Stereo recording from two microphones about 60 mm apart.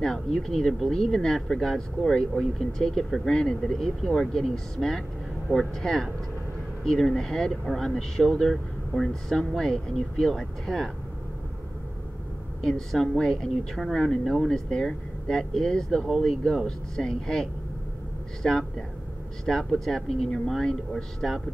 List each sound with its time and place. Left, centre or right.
0.0 s speech: centre
12.6 s speech: centre